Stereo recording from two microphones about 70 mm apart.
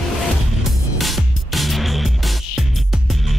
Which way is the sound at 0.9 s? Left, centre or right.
Centre.